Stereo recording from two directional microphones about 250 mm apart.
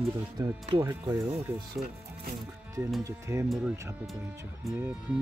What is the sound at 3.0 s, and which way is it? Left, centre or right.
Speech, centre.